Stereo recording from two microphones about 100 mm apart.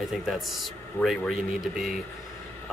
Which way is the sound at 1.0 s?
20° left (ahead or behind).